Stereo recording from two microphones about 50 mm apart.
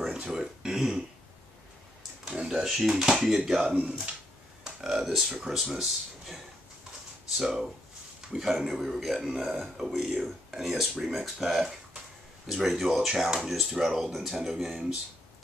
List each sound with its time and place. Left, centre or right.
0.0 s a sound: centre
2.2 s speech: centre
3.7 s speech: right
4.6 s a man's voice: centre